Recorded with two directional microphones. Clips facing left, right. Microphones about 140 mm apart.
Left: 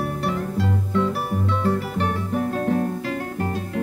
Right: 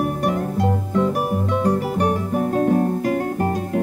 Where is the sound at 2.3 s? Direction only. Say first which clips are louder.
Right 3 dB; 40° right (ahead or behind).